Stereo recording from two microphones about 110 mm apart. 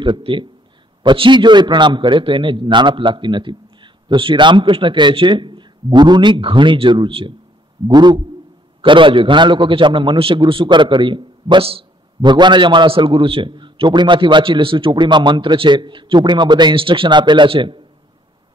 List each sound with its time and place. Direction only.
0.0 s a man's voice: 50° right (ahead or behind)
7.9 s a sound: 40° right (ahead or behind)
8.8 s a man's voice: 50° right (ahead or behind)
12.2 s a man's voice: 45° right (ahead or behind)